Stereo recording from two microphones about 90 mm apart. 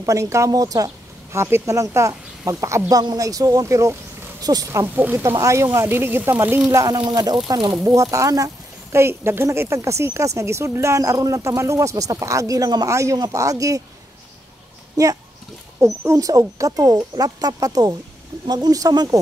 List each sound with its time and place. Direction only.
0.0 s a woman's voice: 35° right (ahead or behind)
4.4 s speech: 45° right (ahead or behind)
4.9 s speech: 20° right (ahead or behind)
5.4 s a woman's voice: 35° right (ahead or behind)
6.7 s a woman's voice: 40° right (ahead or behind)
15.0 s a woman's voice: 40° right (ahead or behind)
15.8 s speech: 30° right (ahead or behind)
16.2 s speech: 40° right (ahead or behind)